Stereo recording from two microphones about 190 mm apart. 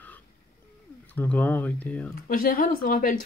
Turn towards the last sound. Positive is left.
turn(degrees=50)  # may be behind; listen again after turning